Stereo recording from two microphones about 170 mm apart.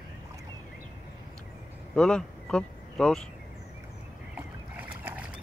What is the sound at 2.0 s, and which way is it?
Speech, 5° left (ahead or behind).